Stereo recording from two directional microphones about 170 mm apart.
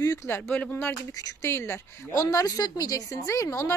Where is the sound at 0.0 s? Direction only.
15° left (ahead or behind).